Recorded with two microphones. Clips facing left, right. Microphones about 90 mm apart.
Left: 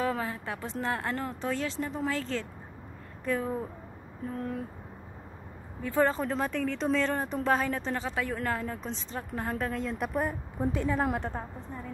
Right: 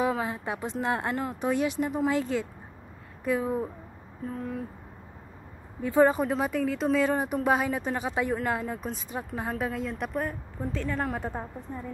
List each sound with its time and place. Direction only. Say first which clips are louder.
0.0 s speech: right 3 dB; 15° right (ahead or behind); by 4.6 s centre (ahead or behind)
5.8 s speech: right 5 dB; 15° right (ahead or behind); by 10.3 s 5° left (ahead or behind)
10.6 s a woman's voice: left 2 dB; 15° left (ahead or behind)
11.1 s speech: right 1 dB; 5° right (ahead or behind)